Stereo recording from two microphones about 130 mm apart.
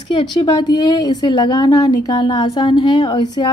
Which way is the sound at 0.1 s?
40° left (ahead or behind).